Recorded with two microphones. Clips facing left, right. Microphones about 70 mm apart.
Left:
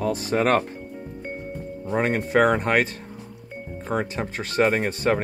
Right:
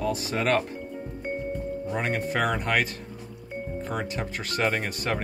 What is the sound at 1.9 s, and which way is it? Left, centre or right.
Speech, left.